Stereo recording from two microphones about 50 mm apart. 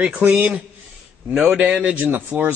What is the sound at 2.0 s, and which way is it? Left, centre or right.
Speech, right.